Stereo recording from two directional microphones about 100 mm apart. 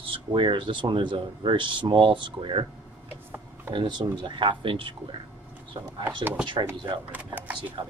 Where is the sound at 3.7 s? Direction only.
50° right (ahead or behind).